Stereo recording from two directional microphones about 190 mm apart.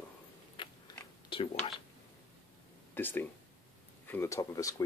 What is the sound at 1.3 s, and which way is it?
Speech, 30° left (ahead or behind).